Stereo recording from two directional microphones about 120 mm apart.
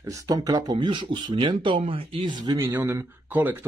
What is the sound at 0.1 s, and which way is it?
Speech, 30° right (ahead or behind).